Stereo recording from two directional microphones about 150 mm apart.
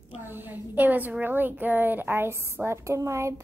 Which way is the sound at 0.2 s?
15° right (ahead or behind).